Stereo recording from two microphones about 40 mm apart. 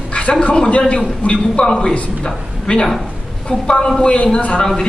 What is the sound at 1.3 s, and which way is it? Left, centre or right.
A man's voice, centre.